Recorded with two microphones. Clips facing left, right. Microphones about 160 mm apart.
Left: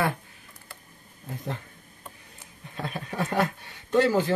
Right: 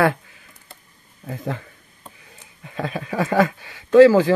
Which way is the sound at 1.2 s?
90° right.